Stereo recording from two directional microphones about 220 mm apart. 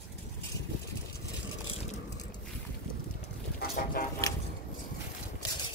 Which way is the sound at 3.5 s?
40° left (ahead or behind).